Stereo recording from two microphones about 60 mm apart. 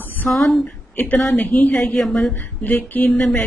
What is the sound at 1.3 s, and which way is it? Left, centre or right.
Speech, left.